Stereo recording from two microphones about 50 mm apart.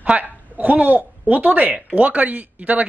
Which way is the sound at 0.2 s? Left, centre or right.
Right.